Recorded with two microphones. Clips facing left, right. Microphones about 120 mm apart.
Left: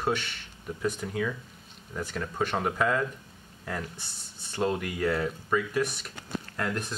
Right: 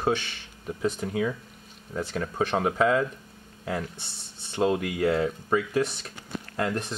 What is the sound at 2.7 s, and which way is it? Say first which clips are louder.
Speech: right 5 dB; 15° right (ahead or behind).